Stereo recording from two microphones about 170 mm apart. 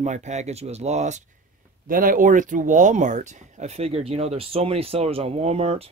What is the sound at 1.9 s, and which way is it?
Speech, 55° right (ahead or behind).